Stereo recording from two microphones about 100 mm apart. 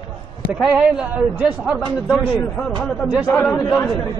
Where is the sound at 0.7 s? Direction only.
15° right (ahead or behind).